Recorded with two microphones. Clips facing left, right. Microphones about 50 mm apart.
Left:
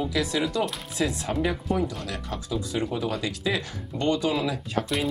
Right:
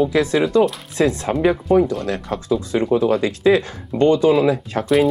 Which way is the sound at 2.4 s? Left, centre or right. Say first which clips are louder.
Right 10 dB; right.